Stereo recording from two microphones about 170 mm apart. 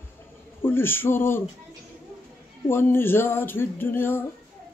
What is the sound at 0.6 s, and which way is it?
Speech, 15° left (ahead or behind).